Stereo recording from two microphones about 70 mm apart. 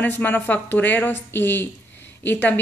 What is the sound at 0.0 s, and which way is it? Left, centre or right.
A woman's voice, left.